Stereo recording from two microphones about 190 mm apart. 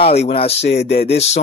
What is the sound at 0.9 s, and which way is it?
Speech, 30° left (ahead or behind).